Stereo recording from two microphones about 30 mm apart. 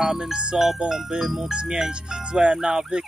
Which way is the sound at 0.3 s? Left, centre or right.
Right.